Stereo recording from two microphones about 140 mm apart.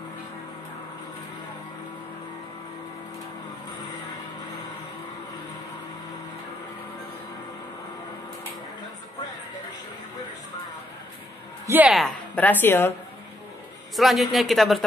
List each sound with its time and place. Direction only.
11.6 s a woman's voice: 15° right (ahead or behind)
12.4 s speech: 10° left (ahead or behind)
13.9 s speech: centre (ahead or behind)